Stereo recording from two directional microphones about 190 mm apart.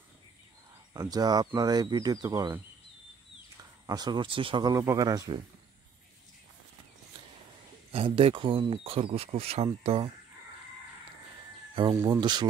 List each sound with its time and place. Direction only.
0.9 s speech: 20° right (ahead or behind)
3.8 s speech: 20° right (ahead or behind)
7.9 s speech: 30° right (ahead or behind)
11.7 s speech: 25° right (ahead or behind)